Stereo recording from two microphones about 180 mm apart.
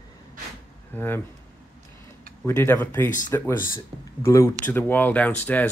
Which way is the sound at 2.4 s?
10° left (ahead or behind).